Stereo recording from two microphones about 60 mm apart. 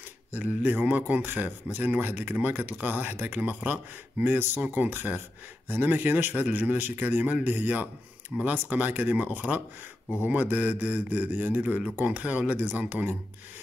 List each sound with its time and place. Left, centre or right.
0.3 s a man's voice: right